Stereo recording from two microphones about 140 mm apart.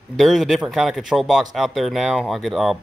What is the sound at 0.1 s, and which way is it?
Speech, centre (ahead or behind).